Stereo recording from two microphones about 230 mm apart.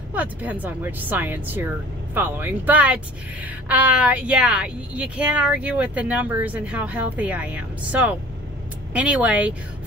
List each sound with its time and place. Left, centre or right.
0.1 s a woman's voice: centre